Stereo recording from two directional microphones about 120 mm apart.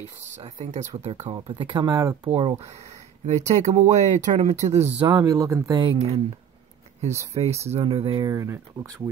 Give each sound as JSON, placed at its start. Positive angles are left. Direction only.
{"t": 0.0, "sound": "speech", "side_deg": -80}
{"t": 0.9, "sound": "speech", "side_deg": -60}
{"t": 1.3, "sound": "speech", "side_deg": -40}
{"t": 1.9, "sound": "speech", "side_deg": -30}
{"t": 2.3, "sound": "speech", "side_deg": -45}
{"t": 3.3, "sound": "speech", "side_deg": -75}
{"t": 4.6, "sound": "speech", "side_deg": -20}
{"t": 5.0, "sound": "speech", "side_deg": -35}
{"t": 5.8, "sound": "speech", "side_deg": -40}
{"t": 7.6, "sound": "speech", "side_deg": -55}
{"t": 8.2, "sound": "speech", "side_deg": -25}